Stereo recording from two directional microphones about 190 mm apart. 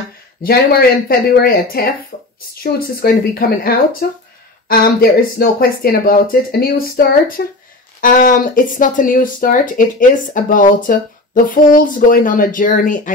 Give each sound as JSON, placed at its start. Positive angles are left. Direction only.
{"t": 0.4, "sound": "speech", "side_deg": 55}
{"t": 5.4, "sound": "speech", "side_deg": 50}